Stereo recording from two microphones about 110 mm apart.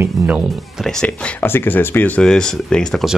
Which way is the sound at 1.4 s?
20° left (ahead or behind).